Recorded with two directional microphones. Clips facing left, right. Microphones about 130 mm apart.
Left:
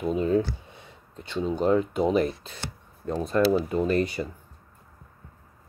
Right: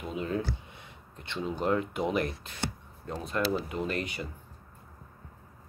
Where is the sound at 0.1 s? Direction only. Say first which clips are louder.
Left 8 dB; 30° left (ahead or behind).